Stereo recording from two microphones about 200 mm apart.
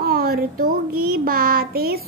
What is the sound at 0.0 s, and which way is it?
A child's voice, 50° right (ahead or behind).